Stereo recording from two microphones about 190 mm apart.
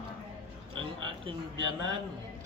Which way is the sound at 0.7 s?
25° right (ahead or behind).